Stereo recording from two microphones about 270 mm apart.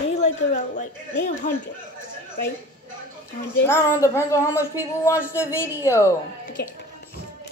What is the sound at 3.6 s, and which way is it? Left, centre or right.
Speech, centre.